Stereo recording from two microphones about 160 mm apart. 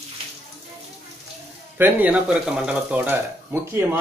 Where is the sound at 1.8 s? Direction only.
10° right (ahead or behind).